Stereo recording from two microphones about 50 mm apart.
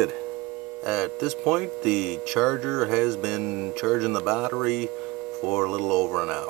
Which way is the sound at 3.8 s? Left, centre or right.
Centre.